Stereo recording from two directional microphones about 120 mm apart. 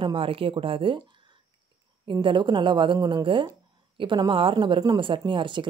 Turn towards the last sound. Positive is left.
turn(degrees=-40)  # may be behind; listen again after turning